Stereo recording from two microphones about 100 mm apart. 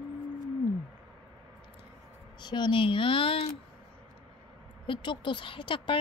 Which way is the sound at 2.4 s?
50° left (ahead or behind).